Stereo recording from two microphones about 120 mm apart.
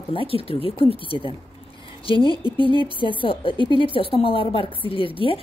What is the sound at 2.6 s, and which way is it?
A woman's voice, 45° left (ahead or behind).